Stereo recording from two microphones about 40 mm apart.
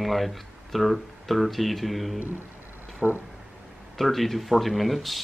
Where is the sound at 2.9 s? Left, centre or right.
Right.